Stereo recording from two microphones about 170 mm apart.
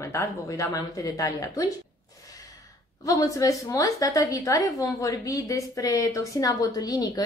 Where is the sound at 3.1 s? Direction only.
20° left (ahead or behind).